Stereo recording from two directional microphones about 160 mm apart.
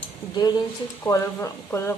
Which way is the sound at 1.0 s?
15° left (ahead or behind).